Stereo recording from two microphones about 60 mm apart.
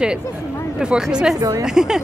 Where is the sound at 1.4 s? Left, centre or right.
Right.